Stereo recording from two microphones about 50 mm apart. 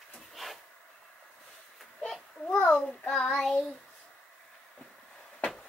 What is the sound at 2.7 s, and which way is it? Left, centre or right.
Child singing, centre.